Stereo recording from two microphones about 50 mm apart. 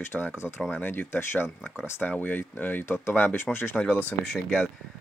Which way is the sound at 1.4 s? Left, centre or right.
Centre.